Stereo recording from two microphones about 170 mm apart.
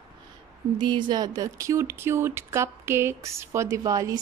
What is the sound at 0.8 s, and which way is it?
Speech, 25° right (ahead or behind).